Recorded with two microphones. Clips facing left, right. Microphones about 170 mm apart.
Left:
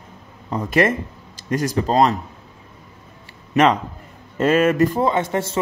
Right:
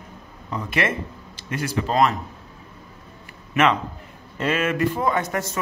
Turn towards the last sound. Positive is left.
turn(degrees=25)  # may be behind; listen again after turning